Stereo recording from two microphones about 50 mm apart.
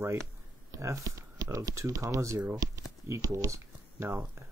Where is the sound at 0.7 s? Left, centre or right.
Right.